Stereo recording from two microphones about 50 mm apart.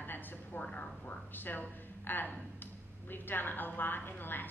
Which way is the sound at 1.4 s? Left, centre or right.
Left.